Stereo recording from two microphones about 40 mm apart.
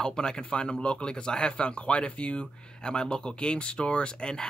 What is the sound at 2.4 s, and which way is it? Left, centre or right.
Speech, centre.